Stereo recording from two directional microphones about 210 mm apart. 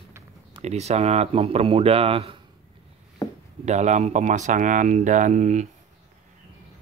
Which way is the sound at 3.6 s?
35° right (ahead or behind).